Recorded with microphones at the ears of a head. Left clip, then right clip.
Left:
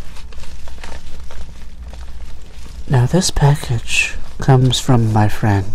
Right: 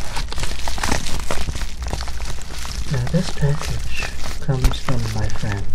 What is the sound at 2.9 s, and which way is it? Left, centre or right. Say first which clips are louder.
Speech: left 9 dB; left.